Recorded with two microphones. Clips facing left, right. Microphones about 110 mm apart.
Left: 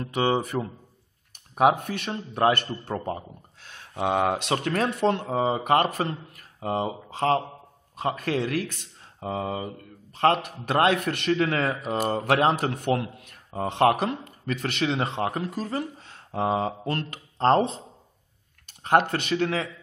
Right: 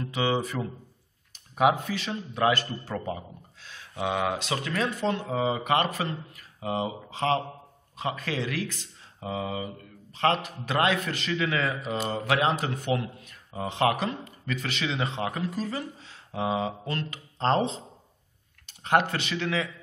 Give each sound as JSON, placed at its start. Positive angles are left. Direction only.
{"t": 0.0, "sound": "a man's voice", "side_deg": 40}
{"t": 1.8, "sound": "a man's voice", "side_deg": 55}
{"t": 4.4, "sound": "speech", "side_deg": 60}
{"t": 5.3, "sound": "a man's voice", "side_deg": 35}